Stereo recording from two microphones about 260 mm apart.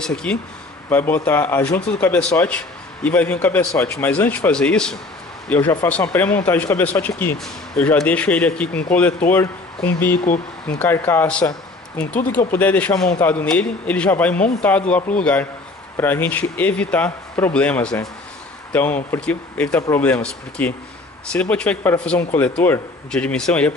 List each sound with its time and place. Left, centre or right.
0.0 s speech: centre
10.7 s speech: centre